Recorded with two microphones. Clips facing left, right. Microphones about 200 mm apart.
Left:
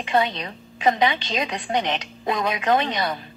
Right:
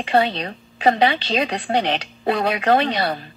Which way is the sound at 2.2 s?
65° right (ahead or behind).